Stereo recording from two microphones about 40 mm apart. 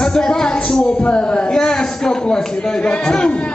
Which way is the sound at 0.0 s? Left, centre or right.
Centre.